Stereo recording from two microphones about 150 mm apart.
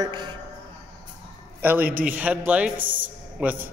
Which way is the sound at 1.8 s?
70° right (ahead or behind).